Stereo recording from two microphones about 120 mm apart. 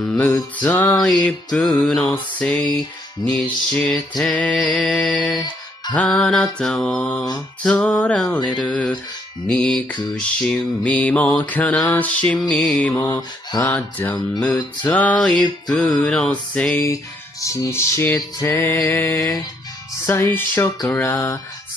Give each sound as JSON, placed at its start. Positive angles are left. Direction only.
{"t": 0.0, "sound": "mantra", "side_deg": 10}
{"t": 12.9, "sound": "mantra", "side_deg": 15}
{"t": 16.7, "sound": "music", "side_deg": 25}